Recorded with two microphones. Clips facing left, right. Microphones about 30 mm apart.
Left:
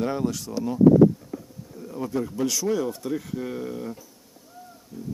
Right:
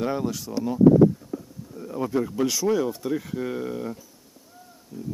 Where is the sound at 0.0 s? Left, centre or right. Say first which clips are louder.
Even; centre.